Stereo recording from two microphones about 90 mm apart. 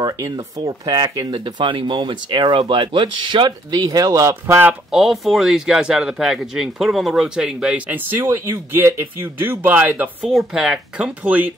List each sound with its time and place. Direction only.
0.0 s speech: 40° right (ahead or behind); by 3.8 s 60° right (ahead or behind)
3.8 s speech: 40° right (ahead or behind)
4.9 s speech: centre (ahead or behind); by 10.1 s 20° right (ahead or behind)
10.2 s speech: 5° right (ahead or behind)